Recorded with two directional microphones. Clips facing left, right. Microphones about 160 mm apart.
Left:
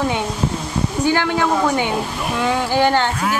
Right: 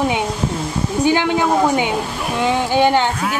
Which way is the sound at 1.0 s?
20° right (ahead or behind).